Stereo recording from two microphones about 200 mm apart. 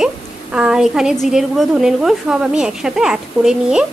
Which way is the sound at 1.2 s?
Centre (ahead or behind).